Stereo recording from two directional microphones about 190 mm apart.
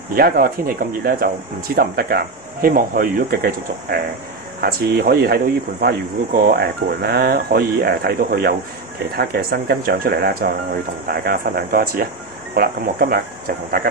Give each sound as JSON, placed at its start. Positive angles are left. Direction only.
{"t": 0.1, "sound": "speech", "side_deg": -50}